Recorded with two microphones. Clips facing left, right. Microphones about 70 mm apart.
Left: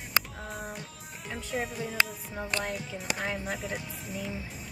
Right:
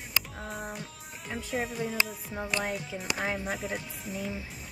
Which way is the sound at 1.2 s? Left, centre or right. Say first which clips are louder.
Right 1 dB; centre.